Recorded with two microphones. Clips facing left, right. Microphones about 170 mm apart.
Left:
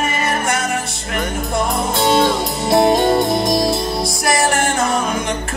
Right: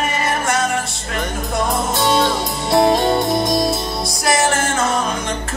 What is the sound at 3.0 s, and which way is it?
Music, centre (ahead or behind).